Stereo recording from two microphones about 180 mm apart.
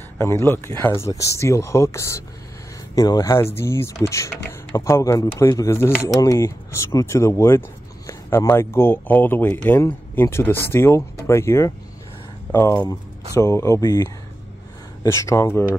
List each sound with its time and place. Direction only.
0.2 s speech: 15° left (ahead or behind)